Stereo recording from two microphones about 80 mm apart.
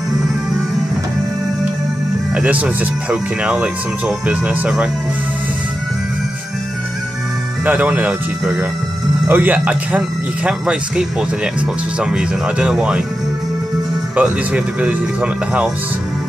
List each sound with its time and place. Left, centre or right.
2.3 s speech: centre
7.6 s speech: centre
14.1 s speech: centre